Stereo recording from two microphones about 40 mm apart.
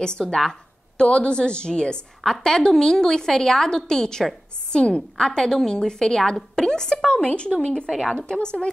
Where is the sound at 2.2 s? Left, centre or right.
Centre.